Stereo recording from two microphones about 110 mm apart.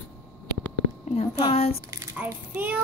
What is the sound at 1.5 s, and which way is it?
Speech, 65° left (ahead or behind).